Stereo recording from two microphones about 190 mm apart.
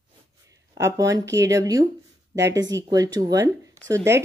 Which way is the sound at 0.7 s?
15° right (ahead or behind).